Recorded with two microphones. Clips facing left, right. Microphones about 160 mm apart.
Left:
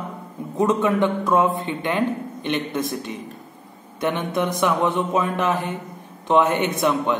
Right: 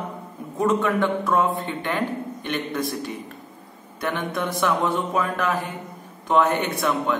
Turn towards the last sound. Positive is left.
turn(degrees=20)  # may be behind; listen again after turning